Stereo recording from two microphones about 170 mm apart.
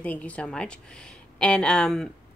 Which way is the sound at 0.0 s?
10° left (ahead or behind).